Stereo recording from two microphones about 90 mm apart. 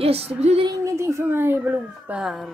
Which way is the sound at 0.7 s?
35° right (ahead or behind).